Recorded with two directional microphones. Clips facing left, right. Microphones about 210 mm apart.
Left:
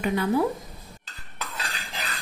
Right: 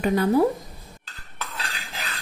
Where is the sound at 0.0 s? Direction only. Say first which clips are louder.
Right 4 dB; 40° right (ahead or behind).